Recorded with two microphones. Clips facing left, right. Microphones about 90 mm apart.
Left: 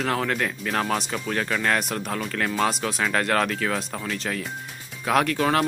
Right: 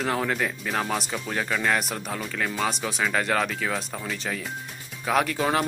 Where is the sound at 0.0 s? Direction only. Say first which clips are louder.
Left 1 dB; 5° right (ahead or behind).